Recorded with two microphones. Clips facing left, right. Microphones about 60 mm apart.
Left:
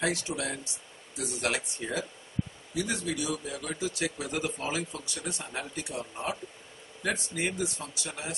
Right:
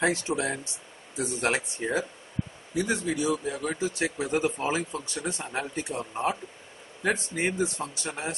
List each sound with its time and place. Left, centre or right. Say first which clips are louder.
0.0 s speech: right 5 dB; right